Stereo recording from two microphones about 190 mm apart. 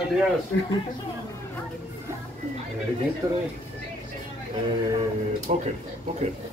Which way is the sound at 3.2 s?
15° right (ahead or behind).